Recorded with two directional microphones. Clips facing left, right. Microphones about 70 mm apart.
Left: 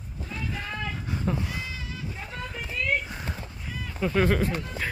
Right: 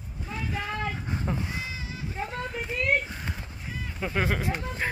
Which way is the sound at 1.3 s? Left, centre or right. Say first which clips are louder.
Left 3 dB; centre.